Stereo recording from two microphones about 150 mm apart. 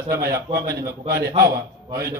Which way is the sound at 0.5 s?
90° right.